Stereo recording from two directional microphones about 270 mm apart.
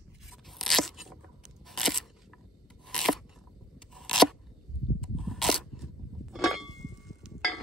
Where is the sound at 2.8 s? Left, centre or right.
Centre.